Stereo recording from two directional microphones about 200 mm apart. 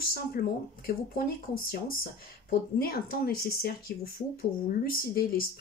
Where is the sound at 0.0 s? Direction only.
50° left (ahead or behind).